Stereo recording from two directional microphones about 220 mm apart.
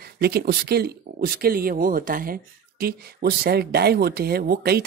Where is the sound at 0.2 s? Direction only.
45° right (ahead or behind).